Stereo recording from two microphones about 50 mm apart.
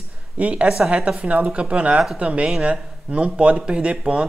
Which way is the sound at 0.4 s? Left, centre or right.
Right.